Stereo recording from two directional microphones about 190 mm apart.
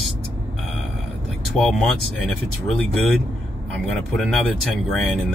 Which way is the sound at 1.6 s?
Centre (ahead or behind).